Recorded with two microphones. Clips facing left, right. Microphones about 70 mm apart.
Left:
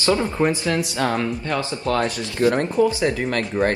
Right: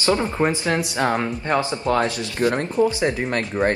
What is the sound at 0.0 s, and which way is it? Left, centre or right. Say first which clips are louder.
Speech: even; right.